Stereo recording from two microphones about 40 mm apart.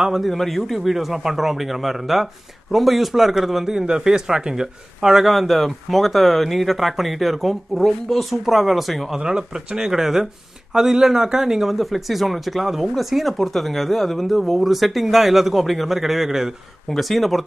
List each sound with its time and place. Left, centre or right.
0.1 s speech: centre
3.6 s speech: centre
9.2 s speech: centre
16.9 s speech: centre